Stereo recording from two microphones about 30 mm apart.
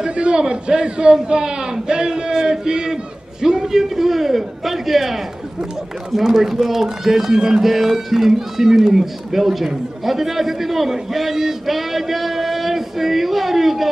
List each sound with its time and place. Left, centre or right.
0.1 s a man's voice: right
7.6 s a man's voice: centre